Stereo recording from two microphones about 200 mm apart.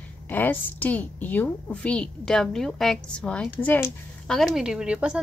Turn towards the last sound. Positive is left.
turn(degrees=-5)  # may be behind; listen again after turning